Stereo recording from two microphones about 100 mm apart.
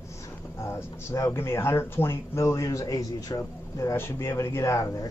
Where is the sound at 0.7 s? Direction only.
30° left (ahead or behind).